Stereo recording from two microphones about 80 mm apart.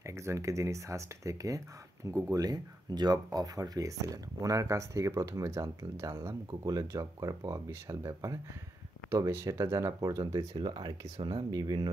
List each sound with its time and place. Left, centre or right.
0.0 s speech: right
9.1 s speech: right
10.6 s speech: right